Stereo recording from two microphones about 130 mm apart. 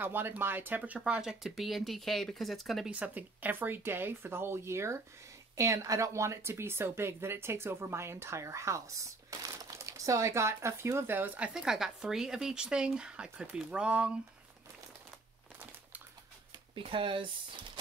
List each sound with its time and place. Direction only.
0.0 s speech: 15° right (ahead or behind)
16.7 s speech: 40° right (ahead or behind)